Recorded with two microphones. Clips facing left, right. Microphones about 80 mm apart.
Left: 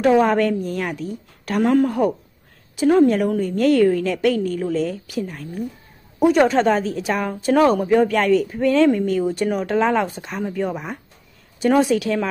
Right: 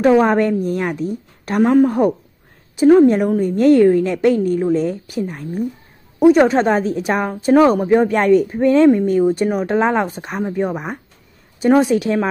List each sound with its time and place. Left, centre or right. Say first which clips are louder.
0.0 s a woman's voice: right 3 dB; centre